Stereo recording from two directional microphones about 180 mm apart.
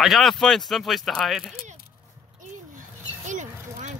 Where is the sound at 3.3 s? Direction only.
45° right (ahead or behind).